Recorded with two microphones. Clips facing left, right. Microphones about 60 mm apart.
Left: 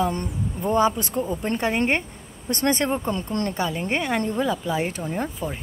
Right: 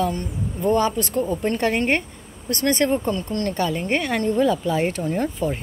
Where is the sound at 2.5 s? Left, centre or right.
Left.